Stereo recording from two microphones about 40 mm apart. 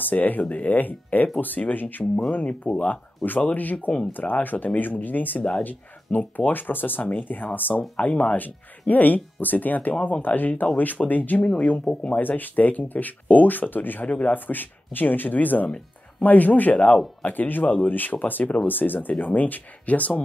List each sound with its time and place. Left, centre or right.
0.0 s speech: left
7.0 s speech: left
7.9 s speech: left
8.4 s speech: left
11.4 s speech: left
12.2 s speech: left
17.3 s speech: left